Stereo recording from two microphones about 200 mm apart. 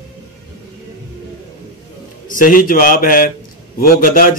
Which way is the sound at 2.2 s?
40° left (ahead or behind).